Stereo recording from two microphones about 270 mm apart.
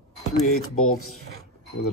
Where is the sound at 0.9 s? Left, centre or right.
Left.